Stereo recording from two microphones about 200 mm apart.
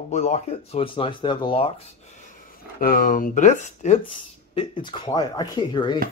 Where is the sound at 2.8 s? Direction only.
45° left (ahead or behind).